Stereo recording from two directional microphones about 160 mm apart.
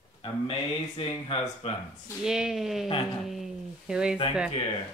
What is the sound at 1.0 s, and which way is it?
Speech, 35° left (ahead or behind).